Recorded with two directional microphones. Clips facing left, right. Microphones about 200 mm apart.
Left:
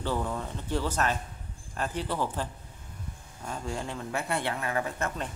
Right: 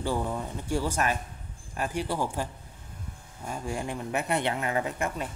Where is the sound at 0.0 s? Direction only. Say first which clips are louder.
Right 1 dB; 15° right (ahead or behind).